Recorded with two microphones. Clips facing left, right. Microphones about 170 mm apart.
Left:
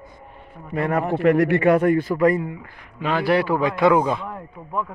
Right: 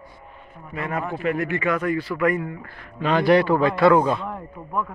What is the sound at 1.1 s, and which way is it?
A man's voice, 70° left (ahead or behind).